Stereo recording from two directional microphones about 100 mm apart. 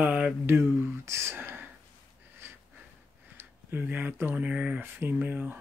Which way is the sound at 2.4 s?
25° right (ahead or behind).